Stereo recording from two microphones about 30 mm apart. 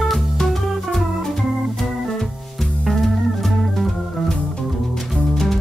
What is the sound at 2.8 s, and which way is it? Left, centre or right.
Music, centre.